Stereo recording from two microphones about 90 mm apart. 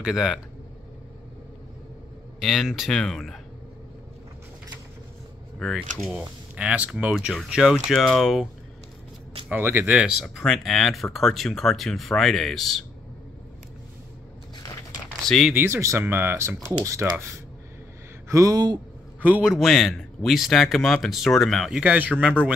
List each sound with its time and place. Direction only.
0.0 s speech: 5° right (ahead or behind)
2.4 s speech: centre (ahead or behind)
5.6 s speech: centre (ahead or behind)
9.5 s speech: 25° right (ahead or behind)
9.9 s speech: 10° right (ahead or behind)
15.2 s speech: centre (ahead or behind)
15.5 s speech: 25° right (ahead or behind)
18.3 s speech: 40° right (ahead or behind)
19.4 s speech: 5° right (ahead or behind)
21.7 s speech: 15° right (ahead or behind)